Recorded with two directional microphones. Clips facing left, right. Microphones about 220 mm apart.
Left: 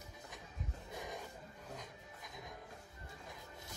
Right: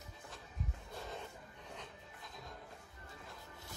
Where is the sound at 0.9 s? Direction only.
15° left (ahead or behind).